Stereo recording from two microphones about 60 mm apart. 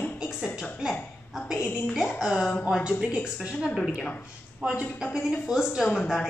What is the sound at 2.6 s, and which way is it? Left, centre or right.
A woman's voice, centre.